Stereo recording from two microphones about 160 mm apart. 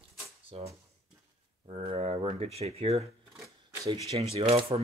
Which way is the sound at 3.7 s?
20° right (ahead or behind).